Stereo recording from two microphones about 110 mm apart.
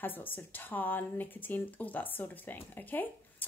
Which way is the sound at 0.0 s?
15° left (ahead or behind).